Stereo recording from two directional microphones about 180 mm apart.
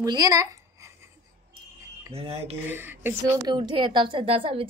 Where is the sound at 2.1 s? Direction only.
35° right (ahead or behind).